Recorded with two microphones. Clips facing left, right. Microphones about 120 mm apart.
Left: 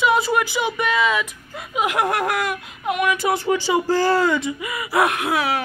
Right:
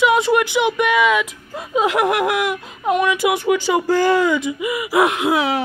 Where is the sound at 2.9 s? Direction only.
30° right (ahead or behind).